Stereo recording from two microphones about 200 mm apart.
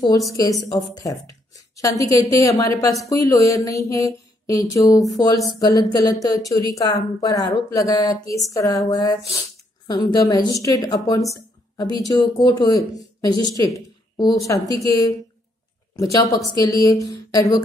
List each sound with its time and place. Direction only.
0.3 s speech: 15° left (ahead or behind)
2.4 s a woman's voice: 15° left (ahead or behind)